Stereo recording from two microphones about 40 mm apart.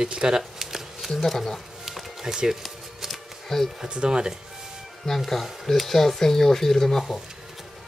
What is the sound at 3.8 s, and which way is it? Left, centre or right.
Speech, right.